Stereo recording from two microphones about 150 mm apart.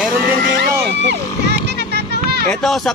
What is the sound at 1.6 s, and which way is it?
Music, 90° right.